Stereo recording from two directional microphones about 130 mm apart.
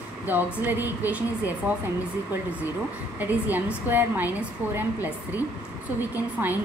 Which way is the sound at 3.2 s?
15° right (ahead or behind).